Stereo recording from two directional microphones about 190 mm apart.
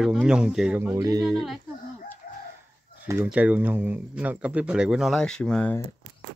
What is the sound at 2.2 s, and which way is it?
Chicken, 50° left (ahead or behind).